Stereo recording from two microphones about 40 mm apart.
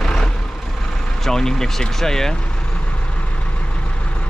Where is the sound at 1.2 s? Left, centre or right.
Centre.